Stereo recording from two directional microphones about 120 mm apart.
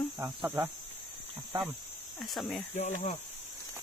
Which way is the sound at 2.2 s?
Centre (ahead or behind).